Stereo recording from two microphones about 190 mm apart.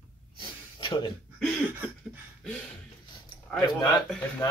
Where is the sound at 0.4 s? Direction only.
25° left (ahead or behind).